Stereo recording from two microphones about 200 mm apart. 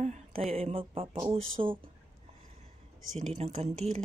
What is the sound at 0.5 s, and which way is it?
Music, 30° right (ahead or behind).